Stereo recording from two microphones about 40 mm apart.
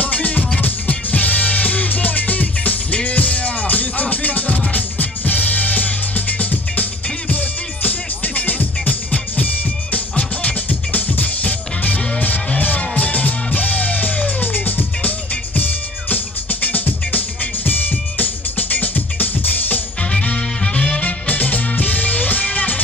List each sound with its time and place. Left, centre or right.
0.0 s music: left
20.0 s music: left